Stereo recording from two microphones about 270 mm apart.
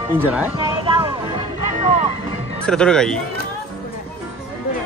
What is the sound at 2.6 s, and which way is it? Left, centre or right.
Speech, centre.